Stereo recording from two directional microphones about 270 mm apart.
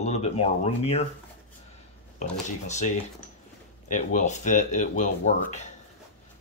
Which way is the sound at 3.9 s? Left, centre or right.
Left.